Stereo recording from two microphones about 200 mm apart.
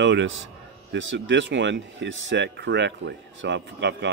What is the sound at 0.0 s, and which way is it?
A man's voice, 60° right (ahead or behind).